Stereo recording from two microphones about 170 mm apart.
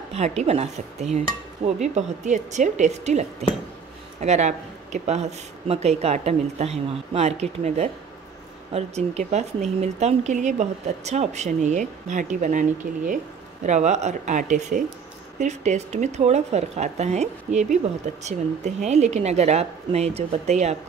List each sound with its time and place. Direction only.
0.1 s speech: 40° right (ahead or behind)